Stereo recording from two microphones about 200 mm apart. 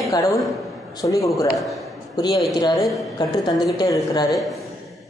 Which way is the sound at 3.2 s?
20° left (ahead or behind).